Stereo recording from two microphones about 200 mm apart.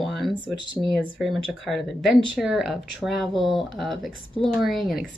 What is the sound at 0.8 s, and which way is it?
Speech, 15° right (ahead or behind).